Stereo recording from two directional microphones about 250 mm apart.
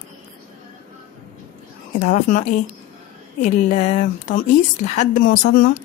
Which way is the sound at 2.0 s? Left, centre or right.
Left.